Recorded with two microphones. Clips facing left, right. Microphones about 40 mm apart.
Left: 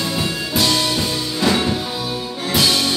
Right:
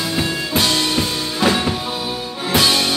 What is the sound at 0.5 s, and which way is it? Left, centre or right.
Music, right.